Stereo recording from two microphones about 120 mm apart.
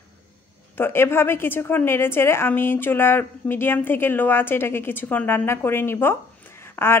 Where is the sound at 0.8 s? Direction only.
20° left (ahead or behind).